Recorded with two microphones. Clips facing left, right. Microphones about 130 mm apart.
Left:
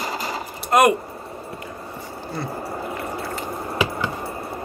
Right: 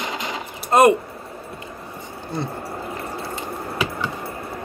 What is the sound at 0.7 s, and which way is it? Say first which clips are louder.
Speech: right 2 dB; 30° right (ahead or behind).